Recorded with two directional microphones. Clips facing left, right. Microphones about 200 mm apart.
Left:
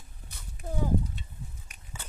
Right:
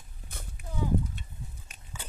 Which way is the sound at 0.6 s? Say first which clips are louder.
Left 2 dB; 45° left (ahead or behind).